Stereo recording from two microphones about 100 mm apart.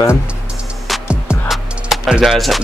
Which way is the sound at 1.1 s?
10° right (ahead or behind).